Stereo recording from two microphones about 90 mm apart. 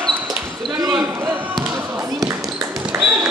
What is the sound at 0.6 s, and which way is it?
Basketball bounce, 45° right (ahead or behind).